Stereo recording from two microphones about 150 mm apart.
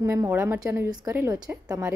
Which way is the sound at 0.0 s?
15° right (ahead or behind).